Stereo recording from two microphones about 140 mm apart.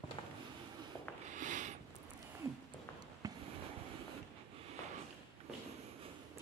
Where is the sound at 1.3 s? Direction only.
60° right (ahead or behind).